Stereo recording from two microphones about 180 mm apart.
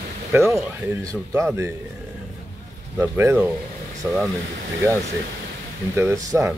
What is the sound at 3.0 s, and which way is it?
Speech, 10° right (ahead or behind).